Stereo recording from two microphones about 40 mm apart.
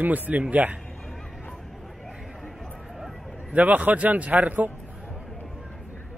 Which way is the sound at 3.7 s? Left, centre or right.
Right.